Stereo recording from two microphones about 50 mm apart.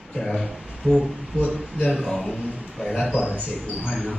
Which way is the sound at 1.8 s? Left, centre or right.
Centre.